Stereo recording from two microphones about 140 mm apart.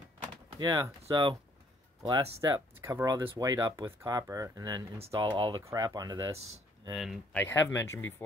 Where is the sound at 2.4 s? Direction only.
25° right (ahead or behind).